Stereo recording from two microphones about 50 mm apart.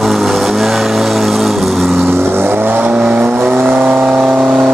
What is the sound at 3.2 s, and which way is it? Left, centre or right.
Vehicle, right.